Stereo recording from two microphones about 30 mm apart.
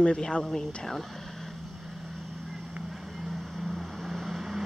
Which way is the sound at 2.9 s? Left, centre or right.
Centre.